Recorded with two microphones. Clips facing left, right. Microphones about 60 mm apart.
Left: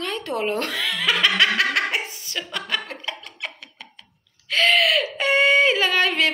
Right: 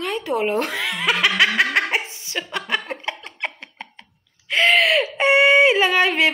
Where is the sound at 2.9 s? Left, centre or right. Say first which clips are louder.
Right 4 dB; right.